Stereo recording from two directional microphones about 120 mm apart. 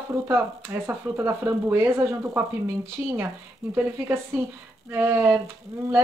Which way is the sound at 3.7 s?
15° right (ahead or behind).